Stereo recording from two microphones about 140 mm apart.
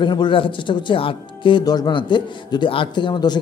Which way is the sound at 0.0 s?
35° left (ahead or behind).